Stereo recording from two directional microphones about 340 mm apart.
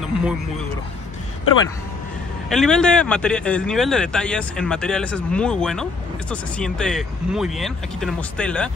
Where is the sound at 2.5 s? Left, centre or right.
Centre.